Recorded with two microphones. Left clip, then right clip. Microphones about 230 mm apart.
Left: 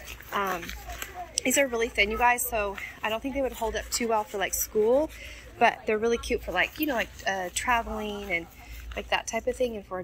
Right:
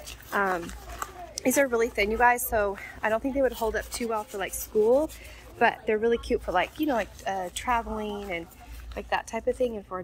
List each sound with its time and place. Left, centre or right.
0.3 s a woman's voice: centre